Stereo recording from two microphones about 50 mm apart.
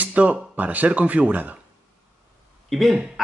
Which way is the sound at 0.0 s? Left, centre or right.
Right.